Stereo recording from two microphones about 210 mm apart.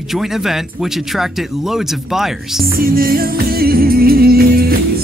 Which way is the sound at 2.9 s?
45° right (ahead or behind).